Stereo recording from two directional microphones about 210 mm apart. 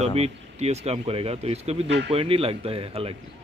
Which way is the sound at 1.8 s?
55° right (ahead or behind).